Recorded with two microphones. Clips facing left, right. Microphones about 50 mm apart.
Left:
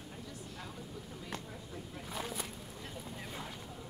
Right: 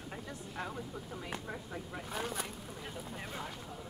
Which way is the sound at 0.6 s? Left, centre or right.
Right.